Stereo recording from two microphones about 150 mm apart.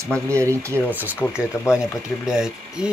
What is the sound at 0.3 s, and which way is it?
Speech, 20° right (ahead or behind).